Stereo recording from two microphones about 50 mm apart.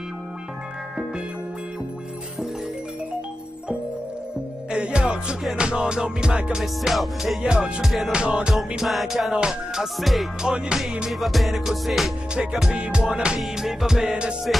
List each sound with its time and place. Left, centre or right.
4.6 s music: right
6.6 s music: centre
7.4 s music: centre
7.8 s music: centre
8.1 s music: right
8.5 s music: centre
9.3 s music: centre
10.4 s music: centre
11.1 s music: centre
12.7 s music: right
13.4 s music: centre